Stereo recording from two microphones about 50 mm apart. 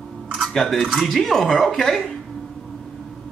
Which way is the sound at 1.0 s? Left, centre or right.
Centre.